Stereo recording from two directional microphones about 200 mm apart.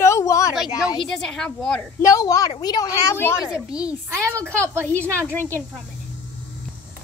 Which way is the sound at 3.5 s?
5° right (ahead or behind).